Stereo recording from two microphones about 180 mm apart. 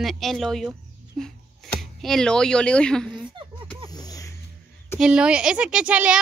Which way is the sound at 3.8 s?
20° left (ahead or behind).